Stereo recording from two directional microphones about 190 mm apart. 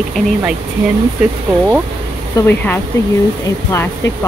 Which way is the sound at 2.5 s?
10° left (ahead or behind).